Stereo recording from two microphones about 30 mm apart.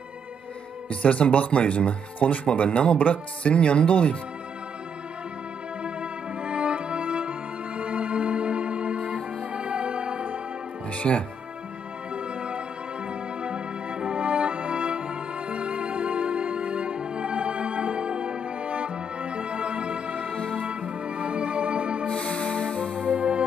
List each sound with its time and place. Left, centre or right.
0.8 s speech: left
2.1 s speech: left
3.0 s speech: left
3.5 s speech: left
5.9 s music: right
10.9 s music: left
12.1 s music: right
20.3 s music: left
20.6 s music: right
22.1 s music: left
23.0 s music: right